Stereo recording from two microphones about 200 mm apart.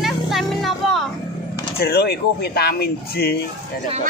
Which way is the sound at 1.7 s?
50° left (ahead or behind).